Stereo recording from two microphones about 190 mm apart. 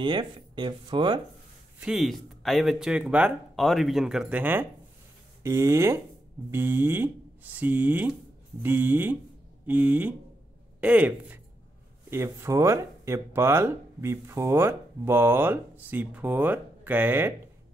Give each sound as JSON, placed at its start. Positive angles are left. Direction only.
{"t": 0.0, "sound": "speech", "side_deg": -25}
{"t": 1.8, "sound": "speech", "side_deg": 0}